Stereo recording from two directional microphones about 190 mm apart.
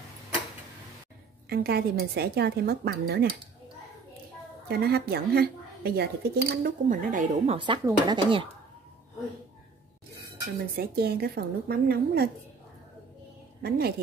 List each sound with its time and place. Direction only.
1.5 s a woman's voice: 55° right (ahead or behind)
4.6 s a woman's voice: 55° right (ahead or behind); by 8.5 s 25° right (ahead or behind)
10.8 s a woman's voice: 55° right (ahead or behind)
13.6 s a woman's voice: 55° right (ahead or behind)